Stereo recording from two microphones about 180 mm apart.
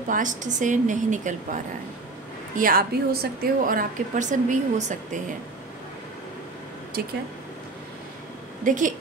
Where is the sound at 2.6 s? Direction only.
50° right (ahead or behind).